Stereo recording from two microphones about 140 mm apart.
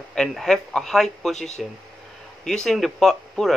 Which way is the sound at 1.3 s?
55° left (ahead or behind).